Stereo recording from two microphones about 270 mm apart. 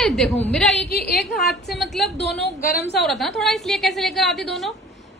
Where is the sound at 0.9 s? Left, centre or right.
Left.